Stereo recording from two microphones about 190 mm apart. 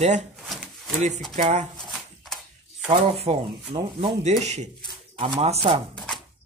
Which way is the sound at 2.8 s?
30° right (ahead or behind).